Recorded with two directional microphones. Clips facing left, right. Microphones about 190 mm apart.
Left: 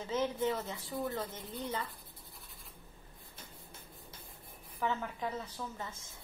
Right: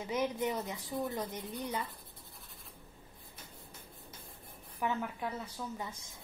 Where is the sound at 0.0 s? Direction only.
15° right (ahead or behind).